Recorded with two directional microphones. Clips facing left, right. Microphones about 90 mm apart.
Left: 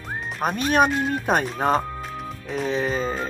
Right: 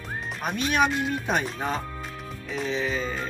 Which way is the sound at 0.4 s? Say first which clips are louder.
Left 4 dB; 40° left (ahead or behind).